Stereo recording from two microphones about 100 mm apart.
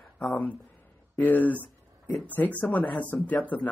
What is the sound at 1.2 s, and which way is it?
Speech, 15° left (ahead or behind).